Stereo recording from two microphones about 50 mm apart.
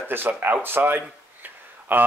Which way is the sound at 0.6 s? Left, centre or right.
Right.